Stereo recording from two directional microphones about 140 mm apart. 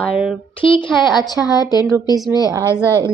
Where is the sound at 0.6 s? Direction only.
35° left (ahead or behind).